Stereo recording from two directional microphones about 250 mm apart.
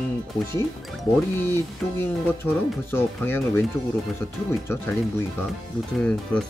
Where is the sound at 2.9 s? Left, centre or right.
Centre.